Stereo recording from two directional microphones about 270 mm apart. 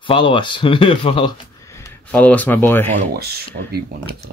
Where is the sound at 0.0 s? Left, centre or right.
Centre.